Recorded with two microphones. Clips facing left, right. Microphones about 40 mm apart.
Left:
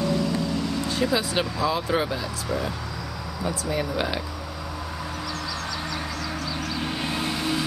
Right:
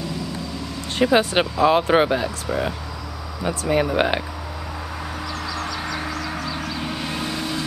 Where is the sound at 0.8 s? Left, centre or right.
Right.